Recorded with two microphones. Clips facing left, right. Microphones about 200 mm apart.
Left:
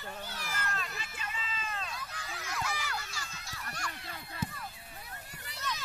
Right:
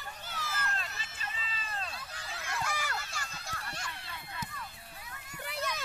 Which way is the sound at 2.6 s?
50° right (ahead or behind).